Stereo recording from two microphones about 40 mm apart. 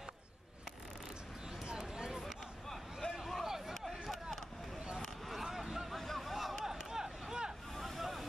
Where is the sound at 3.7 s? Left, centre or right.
Centre.